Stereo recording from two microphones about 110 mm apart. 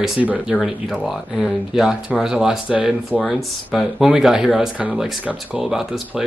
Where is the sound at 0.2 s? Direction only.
15° right (ahead or behind).